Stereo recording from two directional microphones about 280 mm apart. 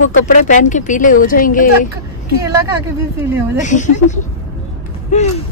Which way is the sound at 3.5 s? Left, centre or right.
Left.